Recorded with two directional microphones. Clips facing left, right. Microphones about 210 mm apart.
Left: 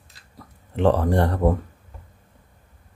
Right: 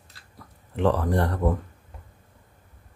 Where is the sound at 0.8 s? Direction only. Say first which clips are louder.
Left 4 dB; 30° left (ahead or behind).